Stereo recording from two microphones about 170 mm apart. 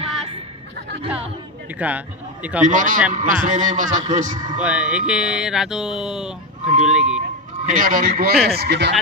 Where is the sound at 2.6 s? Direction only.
50° right (ahead or behind).